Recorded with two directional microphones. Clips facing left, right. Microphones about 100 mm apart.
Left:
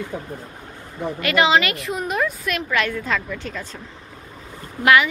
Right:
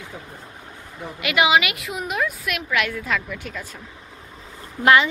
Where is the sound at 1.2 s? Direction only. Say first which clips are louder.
Left 1 dB; 10° right (ahead or behind).